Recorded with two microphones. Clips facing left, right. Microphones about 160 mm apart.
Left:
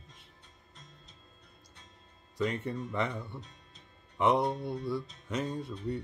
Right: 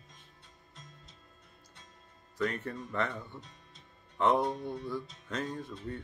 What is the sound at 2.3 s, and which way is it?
Music, 20° left (ahead or behind).